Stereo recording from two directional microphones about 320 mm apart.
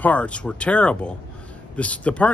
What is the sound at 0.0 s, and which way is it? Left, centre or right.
Speech, centre.